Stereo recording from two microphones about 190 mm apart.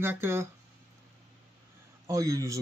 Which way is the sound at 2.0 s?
15° right (ahead or behind).